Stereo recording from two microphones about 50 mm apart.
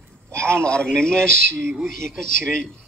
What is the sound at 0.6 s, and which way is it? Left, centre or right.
A man's voice, centre.